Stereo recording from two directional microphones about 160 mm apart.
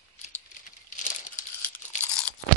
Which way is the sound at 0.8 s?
50° left (ahead or behind).